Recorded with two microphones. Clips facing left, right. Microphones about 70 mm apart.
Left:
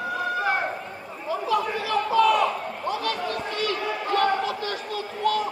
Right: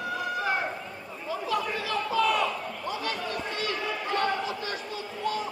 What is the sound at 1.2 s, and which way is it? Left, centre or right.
Chatter, left.